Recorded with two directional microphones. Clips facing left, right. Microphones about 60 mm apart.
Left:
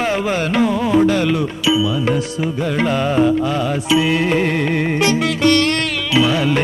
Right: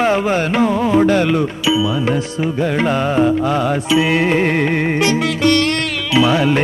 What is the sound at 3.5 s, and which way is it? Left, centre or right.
Music, right.